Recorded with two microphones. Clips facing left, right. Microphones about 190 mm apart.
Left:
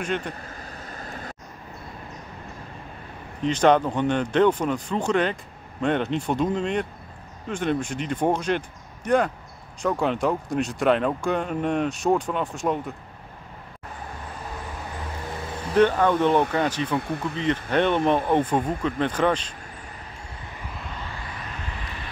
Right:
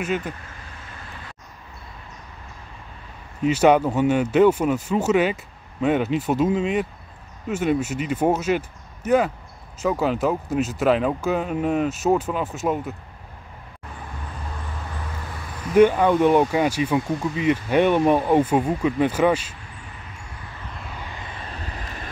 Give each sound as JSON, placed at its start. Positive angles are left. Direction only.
{"t": 0.0, "sound": "speech", "side_deg": -5}
{"t": 0.5, "sound": "vehicle", "side_deg": 40}
{"t": 3.4, "sound": "speech", "side_deg": -10}
{"t": 15.7, "sound": "speech", "side_deg": -10}